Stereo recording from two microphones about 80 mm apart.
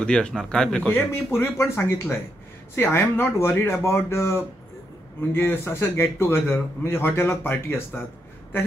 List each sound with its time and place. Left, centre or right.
0.0 s speech: centre
0.9 s a man's voice: left